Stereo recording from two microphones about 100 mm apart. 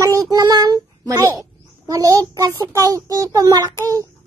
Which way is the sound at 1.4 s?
35° right (ahead or behind).